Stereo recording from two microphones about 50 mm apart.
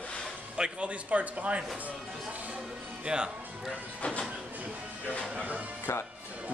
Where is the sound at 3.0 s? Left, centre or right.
Centre.